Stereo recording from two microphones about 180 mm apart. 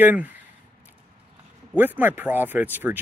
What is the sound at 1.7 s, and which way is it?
Speech, 10° right (ahead or behind).